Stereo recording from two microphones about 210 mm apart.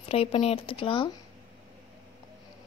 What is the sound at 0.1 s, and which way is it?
Speech, 30° left (ahead or behind).